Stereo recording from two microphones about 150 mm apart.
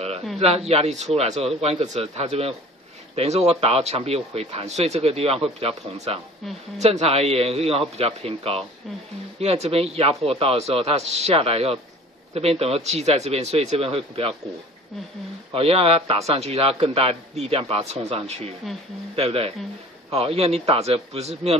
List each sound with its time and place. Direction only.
0.4 s speech: 45° right (ahead or behind)
15.5 s a man's voice: 40° right (ahead or behind)